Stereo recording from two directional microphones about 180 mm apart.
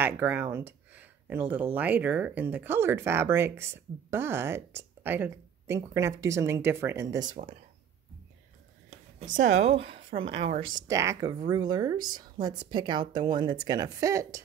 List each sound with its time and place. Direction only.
0.0 s speech: 10° right (ahead or behind)
9.3 s a woman's voice: 45° right (ahead or behind)
10.6 s speech: 90° right
10.9 s a woman's voice: 15° right (ahead or behind)